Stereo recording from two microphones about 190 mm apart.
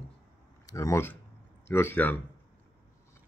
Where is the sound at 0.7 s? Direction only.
15° left (ahead or behind).